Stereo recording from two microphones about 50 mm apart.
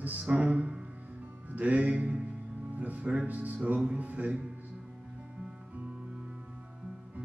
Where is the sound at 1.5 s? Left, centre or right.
Right.